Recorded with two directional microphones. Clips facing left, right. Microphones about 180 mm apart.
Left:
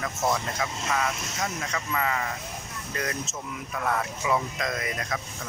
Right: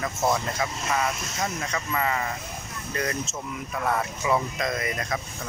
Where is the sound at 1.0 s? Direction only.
5° right (ahead or behind).